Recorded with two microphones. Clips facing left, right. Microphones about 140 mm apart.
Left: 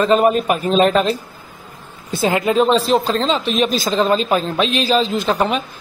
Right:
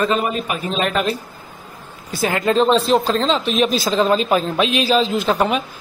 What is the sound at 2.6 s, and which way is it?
A man's voice, centre (ahead or behind).